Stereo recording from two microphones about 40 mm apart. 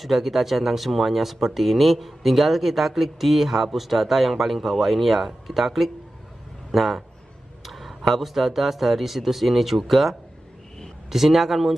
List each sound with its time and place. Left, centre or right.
0.0 s a man's voice: centre
7.6 s a sound: centre
8.1 s speech: centre